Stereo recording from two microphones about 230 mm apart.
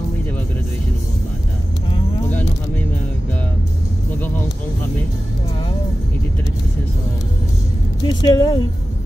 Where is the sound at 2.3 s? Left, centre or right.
Centre.